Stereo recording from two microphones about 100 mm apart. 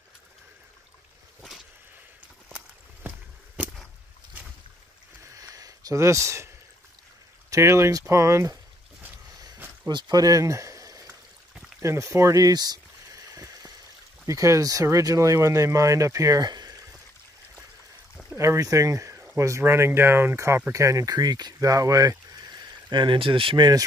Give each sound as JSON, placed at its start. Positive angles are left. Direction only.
{"t": 5.4, "sound": "a sound", "side_deg": -35}
{"t": 7.4, "sound": "speech", "side_deg": -30}
{"t": 9.8, "sound": "speech", "side_deg": -45}
{"t": 11.8, "sound": "a sound", "side_deg": -30}
{"t": 14.2, "sound": "speech", "side_deg": -30}
{"t": 18.3, "sound": "speech", "side_deg": -30}